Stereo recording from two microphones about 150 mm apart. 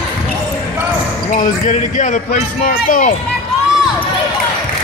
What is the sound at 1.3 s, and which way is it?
Speech, 60° left (ahead or behind).